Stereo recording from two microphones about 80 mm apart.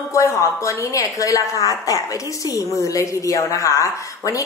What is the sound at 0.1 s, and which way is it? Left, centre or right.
A woman's voice, left.